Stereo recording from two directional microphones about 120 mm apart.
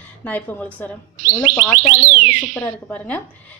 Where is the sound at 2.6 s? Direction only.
10° left (ahead or behind).